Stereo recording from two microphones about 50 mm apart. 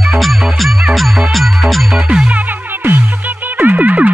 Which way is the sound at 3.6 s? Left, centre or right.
Right.